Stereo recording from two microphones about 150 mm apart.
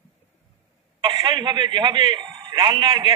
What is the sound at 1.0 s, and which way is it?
A man's voice, 30° right (ahead or behind).